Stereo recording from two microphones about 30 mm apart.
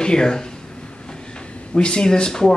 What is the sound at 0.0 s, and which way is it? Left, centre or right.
Speech, left.